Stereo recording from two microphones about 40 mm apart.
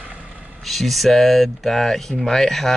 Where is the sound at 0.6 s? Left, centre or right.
Centre.